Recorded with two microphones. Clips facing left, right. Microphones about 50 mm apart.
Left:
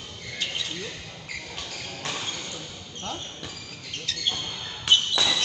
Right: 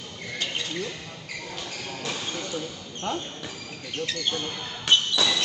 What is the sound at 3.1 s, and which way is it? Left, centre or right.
Speech, right.